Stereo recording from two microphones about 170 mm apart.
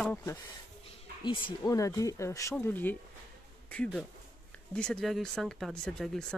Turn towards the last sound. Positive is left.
turn(degrees=5)  # may be behind; listen again after turning